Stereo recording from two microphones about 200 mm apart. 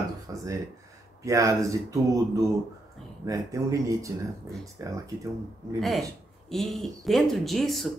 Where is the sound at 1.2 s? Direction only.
15° right (ahead or behind).